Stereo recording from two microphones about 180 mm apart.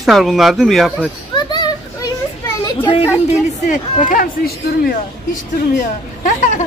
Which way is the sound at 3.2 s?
40° left (ahead or behind).